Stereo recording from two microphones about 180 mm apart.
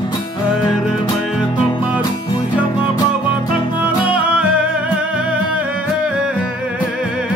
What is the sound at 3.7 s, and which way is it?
Music, 5° right (ahead or behind).